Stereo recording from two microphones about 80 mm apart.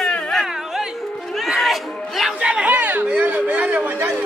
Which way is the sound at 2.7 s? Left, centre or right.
Right.